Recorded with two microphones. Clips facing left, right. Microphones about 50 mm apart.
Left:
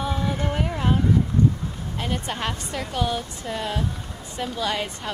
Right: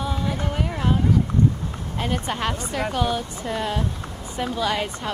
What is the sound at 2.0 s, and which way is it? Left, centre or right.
Speech, centre.